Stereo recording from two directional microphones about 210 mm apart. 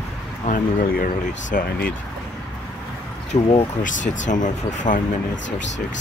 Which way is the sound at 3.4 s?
30° left (ahead or behind).